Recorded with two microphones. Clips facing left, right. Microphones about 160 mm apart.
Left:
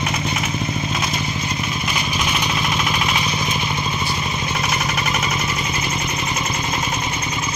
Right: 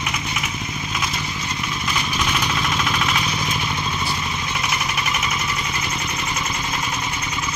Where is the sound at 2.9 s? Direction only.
15° left (ahead or behind).